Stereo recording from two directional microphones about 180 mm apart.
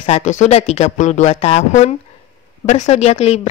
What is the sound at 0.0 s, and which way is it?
A man's voice, 40° left (ahead or behind).